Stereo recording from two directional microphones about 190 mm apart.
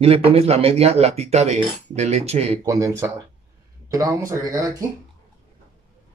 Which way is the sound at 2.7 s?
15° right (ahead or behind).